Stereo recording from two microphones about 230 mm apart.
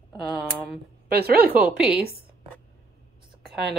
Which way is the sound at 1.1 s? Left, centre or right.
Right.